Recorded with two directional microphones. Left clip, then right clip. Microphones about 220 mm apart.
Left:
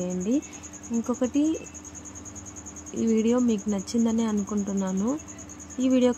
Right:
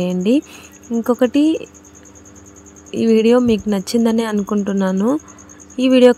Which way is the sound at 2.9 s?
35° right (ahead or behind).